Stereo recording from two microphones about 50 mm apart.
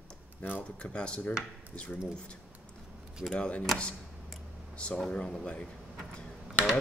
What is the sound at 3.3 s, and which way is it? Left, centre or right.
Speech, left.